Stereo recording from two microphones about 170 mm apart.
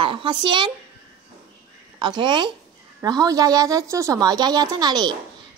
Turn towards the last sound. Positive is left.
turn(degrees=-25)  # may be behind; listen again after turning